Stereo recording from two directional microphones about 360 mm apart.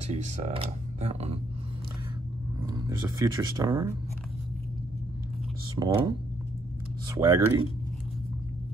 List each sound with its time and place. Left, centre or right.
0.0 s speech: centre
2.7 s speech: centre
5.8 s speech: centre